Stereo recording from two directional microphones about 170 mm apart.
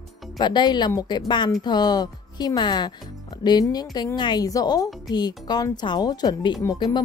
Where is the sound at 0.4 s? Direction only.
25° left (ahead or behind).